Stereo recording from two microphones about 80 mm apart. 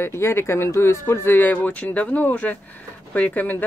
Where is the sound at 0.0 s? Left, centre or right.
Left.